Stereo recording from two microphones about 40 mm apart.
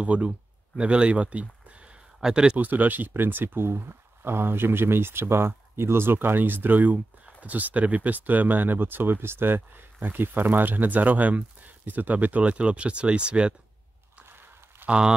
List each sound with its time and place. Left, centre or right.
0.0 s speech: right
2.1 s speech: centre
2.5 s speech: right
3.1 s speech: right
14.9 s speech: right